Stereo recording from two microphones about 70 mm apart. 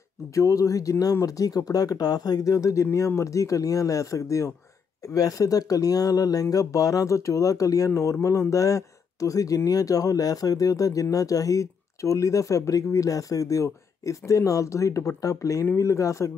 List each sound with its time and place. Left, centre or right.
0.3 s speech: left